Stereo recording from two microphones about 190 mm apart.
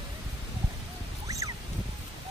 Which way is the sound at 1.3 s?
15° right (ahead or behind).